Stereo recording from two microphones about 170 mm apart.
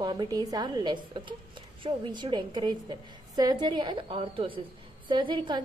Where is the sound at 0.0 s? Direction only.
25° right (ahead or behind).